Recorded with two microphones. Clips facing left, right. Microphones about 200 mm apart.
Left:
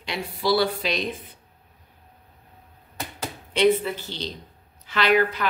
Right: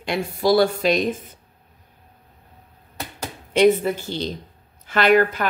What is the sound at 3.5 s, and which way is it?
A woman's voice, 45° right (ahead or behind).